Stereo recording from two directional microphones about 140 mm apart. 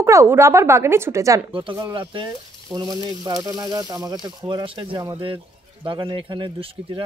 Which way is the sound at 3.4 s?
25° right (ahead or behind).